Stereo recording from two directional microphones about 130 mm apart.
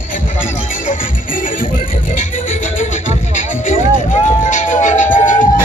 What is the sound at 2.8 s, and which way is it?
Music, 75° left (ahead or behind).